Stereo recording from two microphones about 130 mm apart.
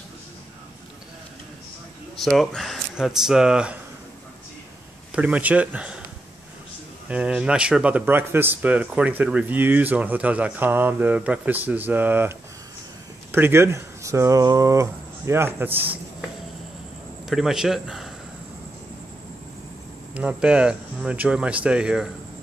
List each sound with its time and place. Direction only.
2.1 s speech: centre (ahead or behind)
5.1 s speech: 10° right (ahead or behind)
7.1 s speech: 10° right (ahead or behind)
17.3 s speech: centre (ahead or behind)
20.2 s speech: 10° right (ahead or behind)